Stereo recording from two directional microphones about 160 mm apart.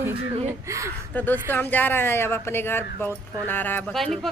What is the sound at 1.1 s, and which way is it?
Speech, 10° left (ahead or behind).